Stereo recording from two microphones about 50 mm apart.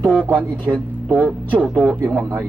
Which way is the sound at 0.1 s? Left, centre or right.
Centre.